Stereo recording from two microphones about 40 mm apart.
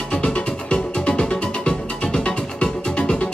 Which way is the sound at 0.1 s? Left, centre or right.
Left.